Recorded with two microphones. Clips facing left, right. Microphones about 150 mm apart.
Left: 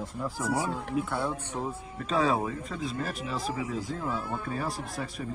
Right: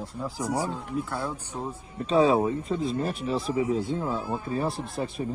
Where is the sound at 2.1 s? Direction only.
30° right (ahead or behind).